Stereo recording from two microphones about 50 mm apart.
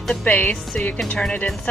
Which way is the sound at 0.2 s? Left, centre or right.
Left.